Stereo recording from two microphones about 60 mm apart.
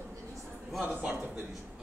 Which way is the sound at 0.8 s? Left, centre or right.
Right.